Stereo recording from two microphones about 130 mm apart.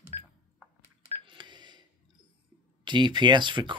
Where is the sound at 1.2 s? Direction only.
35° right (ahead or behind).